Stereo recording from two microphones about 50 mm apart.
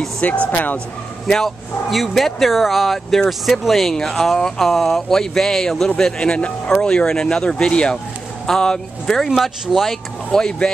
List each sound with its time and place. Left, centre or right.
0.2 s speech: left
1.2 s speech: centre
10.3 s speech: centre